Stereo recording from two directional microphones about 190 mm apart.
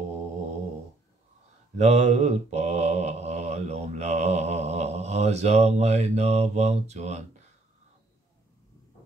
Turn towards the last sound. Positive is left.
turn(degrees=-35)  # may be behind; listen again after turning